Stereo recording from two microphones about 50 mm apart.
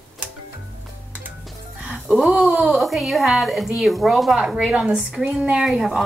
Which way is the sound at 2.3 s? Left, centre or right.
Right.